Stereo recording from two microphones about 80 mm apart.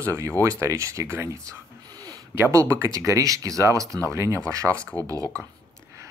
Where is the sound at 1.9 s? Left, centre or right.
Right.